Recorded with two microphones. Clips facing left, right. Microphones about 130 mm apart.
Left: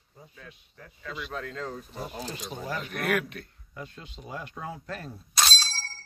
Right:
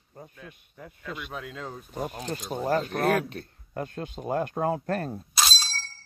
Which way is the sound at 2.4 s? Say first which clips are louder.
Right 12 dB; 40° right (ahead or behind).